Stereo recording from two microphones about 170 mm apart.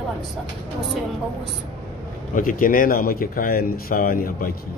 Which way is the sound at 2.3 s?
55° left (ahead or behind).